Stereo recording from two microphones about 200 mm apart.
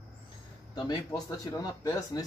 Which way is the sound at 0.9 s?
20° left (ahead or behind).